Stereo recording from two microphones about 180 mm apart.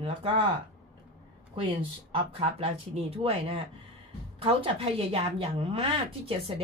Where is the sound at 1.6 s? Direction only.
30° right (ahead or behind).